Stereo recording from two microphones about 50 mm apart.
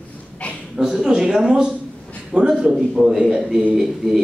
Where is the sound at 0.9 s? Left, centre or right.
Centre.